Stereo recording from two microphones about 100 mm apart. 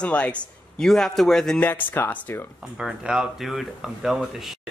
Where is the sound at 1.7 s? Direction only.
20° left (ahead or behind).